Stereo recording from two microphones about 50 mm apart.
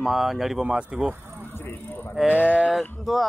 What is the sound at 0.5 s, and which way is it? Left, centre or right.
Speech, centre.